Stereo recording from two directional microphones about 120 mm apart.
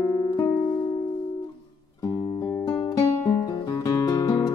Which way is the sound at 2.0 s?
30° left (ahead or behind).